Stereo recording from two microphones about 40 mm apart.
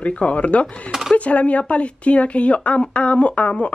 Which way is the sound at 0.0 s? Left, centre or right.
Left.